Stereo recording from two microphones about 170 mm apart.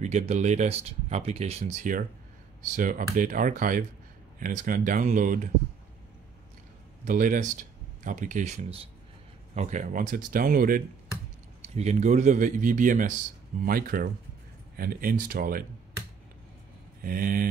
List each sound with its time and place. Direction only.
0.0 s a man's voice: 40° right (ahead or behind)
7.1 s speech: 50° right (ahead or behind)
11.6 s a man's voice: 40° right (ahead or behind); by 15.6 s 60° right (ahead or behind)
17.0 s speech: 60° right (ahead or behind)